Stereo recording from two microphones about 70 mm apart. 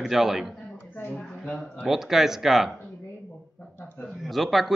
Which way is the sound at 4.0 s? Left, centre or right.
Centre.